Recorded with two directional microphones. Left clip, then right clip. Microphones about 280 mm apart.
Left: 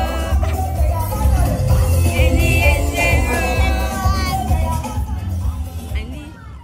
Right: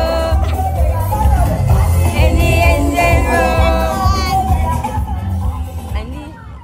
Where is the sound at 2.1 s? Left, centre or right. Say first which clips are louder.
Right 4 dB; centre.